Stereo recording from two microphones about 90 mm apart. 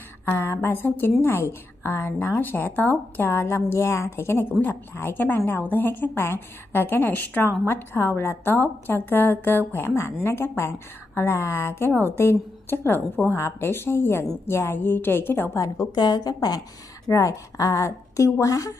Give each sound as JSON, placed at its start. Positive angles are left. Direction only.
{"t": 0.2, "sound": "a woman's voice", "side_deg": 25}
{"t": 15.9, "sound": "a woman's voice", "side_deg": 55}